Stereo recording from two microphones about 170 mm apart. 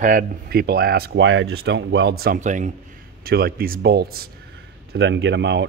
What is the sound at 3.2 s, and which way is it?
Speech, 60° right (ahead or behind).